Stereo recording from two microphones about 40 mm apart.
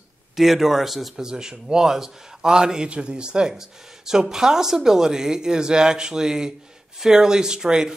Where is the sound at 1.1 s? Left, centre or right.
Centre.